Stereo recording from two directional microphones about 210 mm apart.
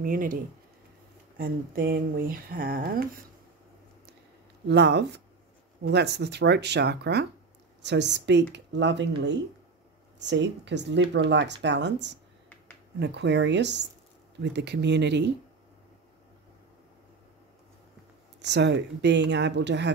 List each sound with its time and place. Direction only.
0.0 s speech: 40° right (ahead or behind)
1.4 s speech: 45° right (ahead or behind)
4.6 s speech: 55° right (ahead or behind)
10.1 s speech: 55° right (ahead or behind)
18.4 s speech: 55° right (ahead or behind)